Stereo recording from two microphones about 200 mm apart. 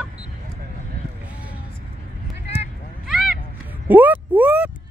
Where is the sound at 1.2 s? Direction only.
5° right (ahead or behind).